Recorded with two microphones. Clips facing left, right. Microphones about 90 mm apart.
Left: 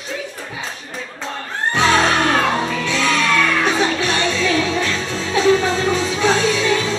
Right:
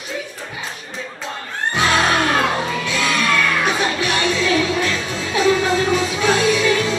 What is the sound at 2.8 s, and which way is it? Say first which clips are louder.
Music: left 2 dB; 10° right (ahead or behind).